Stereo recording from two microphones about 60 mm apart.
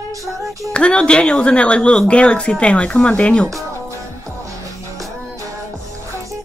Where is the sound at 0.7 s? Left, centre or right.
Centre.